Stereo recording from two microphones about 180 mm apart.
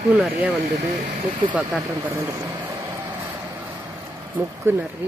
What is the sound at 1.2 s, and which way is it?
Speech, 25° right (ahead or behind).